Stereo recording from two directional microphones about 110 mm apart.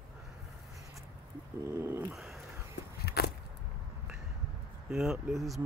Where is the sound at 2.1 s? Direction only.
Centre (ahead or behind).